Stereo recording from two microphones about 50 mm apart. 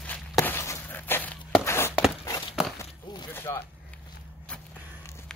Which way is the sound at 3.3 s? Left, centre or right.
Left.